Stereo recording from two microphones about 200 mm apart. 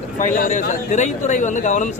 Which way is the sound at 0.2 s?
40° left (ahead or behind).